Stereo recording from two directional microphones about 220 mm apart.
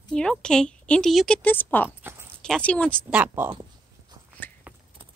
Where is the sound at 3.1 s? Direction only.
10° right (ahead or behind).